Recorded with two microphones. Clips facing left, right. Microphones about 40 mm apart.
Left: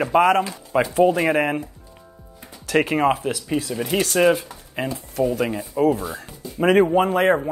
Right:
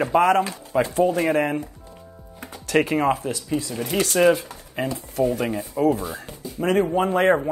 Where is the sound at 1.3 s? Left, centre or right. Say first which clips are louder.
Left 1 dB; centre.